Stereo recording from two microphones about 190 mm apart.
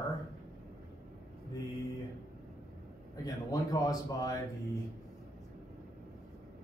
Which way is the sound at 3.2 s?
20° left (ahead or behind).